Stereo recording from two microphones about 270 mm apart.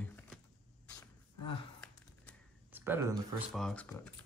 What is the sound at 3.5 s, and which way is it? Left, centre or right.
Speech, centre.